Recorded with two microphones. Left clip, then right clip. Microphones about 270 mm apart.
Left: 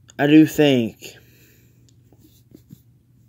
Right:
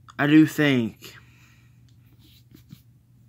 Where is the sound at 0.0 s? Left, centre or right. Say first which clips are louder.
Left 4 dB; centre.